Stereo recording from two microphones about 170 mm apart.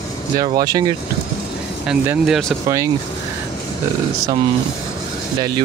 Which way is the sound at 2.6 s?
20° right (ahead or behind).